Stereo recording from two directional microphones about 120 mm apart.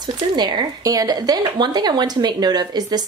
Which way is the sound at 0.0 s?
40° right (ahead or behind).